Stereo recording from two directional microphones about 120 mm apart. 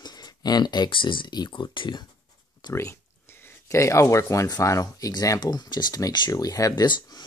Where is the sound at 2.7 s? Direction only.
25° left (ahead or behind).